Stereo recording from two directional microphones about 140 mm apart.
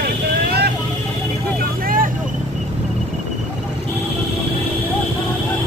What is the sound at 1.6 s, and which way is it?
Vehicle, 90° right.